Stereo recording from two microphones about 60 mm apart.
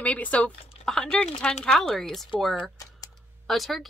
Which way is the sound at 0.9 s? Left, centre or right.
Centre.